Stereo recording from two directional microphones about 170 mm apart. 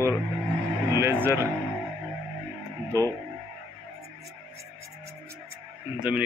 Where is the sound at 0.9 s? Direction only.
15° right (ahead or behind).